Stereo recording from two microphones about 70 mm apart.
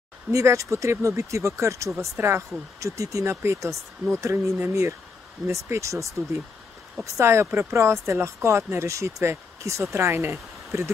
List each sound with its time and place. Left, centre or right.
0.3 s speech: right
2.1 s speech: right
2.8 s speech: right
7.2 s speech: right